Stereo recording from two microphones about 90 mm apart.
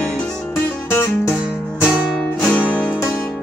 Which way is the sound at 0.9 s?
30° left (ahead or behind).